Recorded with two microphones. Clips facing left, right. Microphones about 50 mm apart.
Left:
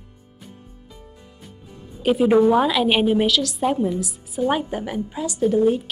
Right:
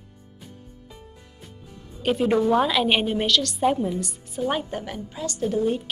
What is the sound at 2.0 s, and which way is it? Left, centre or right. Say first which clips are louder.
A woman's voice: left 5 dB; centre.